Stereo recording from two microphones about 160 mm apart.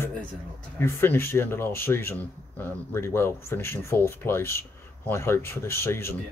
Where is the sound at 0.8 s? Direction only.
15° left (ahead or behind).